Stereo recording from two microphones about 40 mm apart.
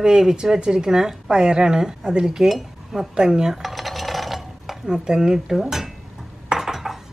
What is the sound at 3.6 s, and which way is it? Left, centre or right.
Dishes, centre.